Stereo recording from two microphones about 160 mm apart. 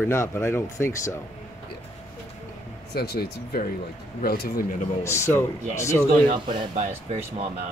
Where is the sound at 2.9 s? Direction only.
80° left; by 4.7 s 65° left (ahead or behind).